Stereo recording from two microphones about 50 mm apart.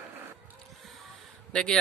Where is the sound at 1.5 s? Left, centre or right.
Centre.